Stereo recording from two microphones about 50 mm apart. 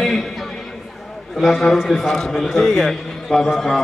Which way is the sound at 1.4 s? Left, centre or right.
Centre.